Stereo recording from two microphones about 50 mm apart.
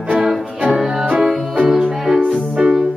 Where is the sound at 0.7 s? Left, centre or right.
Centre.